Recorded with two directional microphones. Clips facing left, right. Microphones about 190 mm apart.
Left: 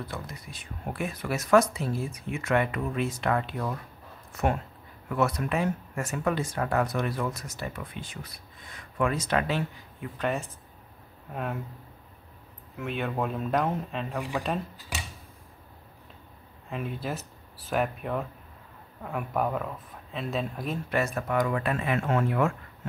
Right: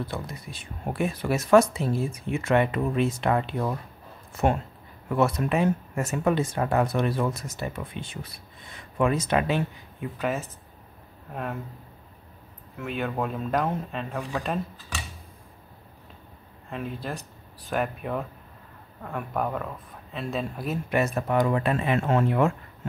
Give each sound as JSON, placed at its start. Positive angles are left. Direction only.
{"t": 0.0, "sound": "speech", "side_deg": -30}
{"t": 10.1, "sound": "speech", "side_deg": 0}
{"t": 12.7, "sound": "speech", "side_deg": 0}
{"t": 16.6, "sound": "speech", "side_deg": 0}
{"t": 20.9, "sound": "speech", "side_deg": -20}